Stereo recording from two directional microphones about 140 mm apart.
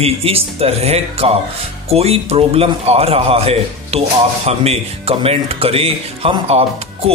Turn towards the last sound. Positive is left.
turn(degrees=-45)  # may be behind; listen again after turning